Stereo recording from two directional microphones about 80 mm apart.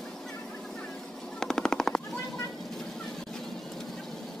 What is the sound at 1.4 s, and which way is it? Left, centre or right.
Machine gun, centre.